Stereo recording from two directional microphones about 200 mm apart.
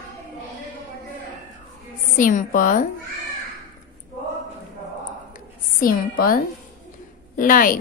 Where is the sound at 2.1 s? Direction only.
40° left (ahead or behind).